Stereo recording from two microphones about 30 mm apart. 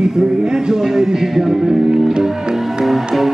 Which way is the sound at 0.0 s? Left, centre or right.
Right.